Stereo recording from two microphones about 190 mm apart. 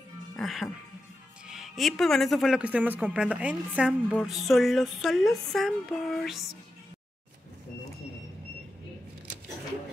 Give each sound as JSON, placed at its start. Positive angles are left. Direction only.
{"t": 0.4, "sound": "speech", "side_deg": 0}